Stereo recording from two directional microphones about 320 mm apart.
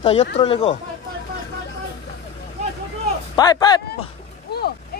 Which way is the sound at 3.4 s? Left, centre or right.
Centre.